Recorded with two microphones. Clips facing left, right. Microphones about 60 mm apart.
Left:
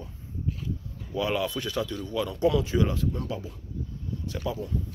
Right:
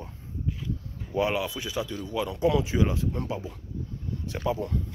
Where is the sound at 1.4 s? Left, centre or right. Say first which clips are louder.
Left 1 dB; centre; by 4.6 s right.